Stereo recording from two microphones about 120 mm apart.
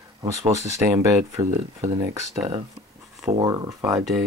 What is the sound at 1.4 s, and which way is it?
Speech, 75° right (ahead or behind).